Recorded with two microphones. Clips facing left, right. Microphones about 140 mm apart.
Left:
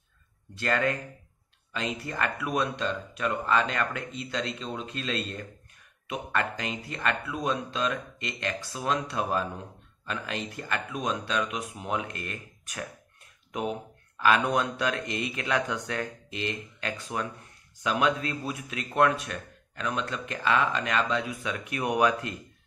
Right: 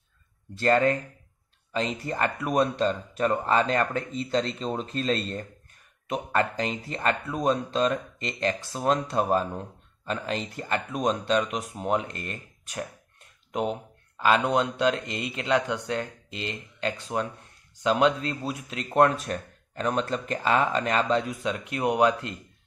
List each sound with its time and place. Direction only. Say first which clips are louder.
0.6 s speech: right 6 dB; 35° right (ahead or behind)